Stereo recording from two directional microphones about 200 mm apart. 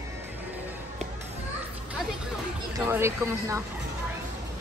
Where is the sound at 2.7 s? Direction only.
10° right (ahead or behind).